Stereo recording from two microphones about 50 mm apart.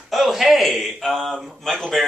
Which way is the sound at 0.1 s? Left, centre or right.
Centre.